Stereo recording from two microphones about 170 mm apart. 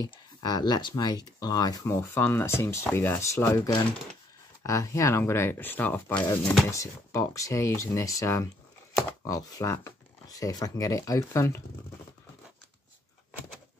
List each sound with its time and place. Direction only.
0.0 s speech: 25° left (ahead or behind)
6.1 s speech: 20° left (ahead or behind)